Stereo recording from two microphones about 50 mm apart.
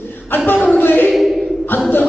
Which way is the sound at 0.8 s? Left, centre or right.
Left.